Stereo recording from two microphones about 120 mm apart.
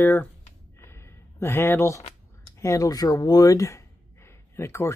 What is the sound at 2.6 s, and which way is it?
Speech, 25° left (ahead or behind).